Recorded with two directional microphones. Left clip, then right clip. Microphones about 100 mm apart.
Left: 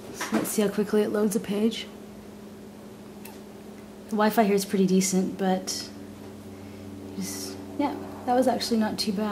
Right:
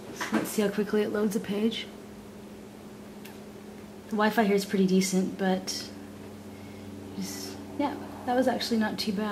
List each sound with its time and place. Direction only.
0.5 s a woman's voice: 30° left (ahead or behind)
4.1 s a woman's voice: 30° left (ahead or behind)
7.2 s a woman's voice: 35° left (ahead or behind)